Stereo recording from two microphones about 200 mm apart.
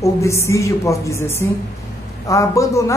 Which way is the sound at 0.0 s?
15° left (ahead or behind).